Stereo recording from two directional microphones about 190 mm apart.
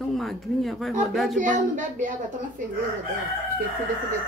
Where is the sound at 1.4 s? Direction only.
40° right (ahead or behind).